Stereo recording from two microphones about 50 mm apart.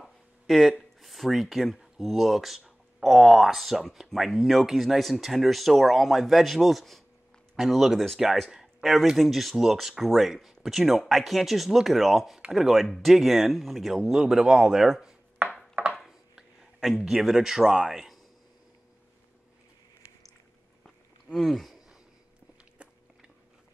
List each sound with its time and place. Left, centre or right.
0.0 s speech: centre
15.7 s chopping: right
17.0 s speech: centre
21.3 s a sound: centre